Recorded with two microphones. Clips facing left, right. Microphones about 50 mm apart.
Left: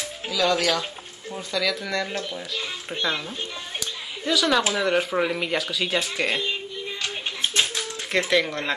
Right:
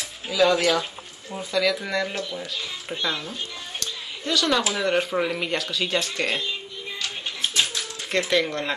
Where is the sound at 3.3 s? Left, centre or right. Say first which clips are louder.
Left 1 dB; centre.